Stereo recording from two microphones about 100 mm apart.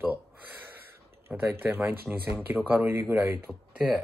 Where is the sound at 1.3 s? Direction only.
15° right (ahead or behind).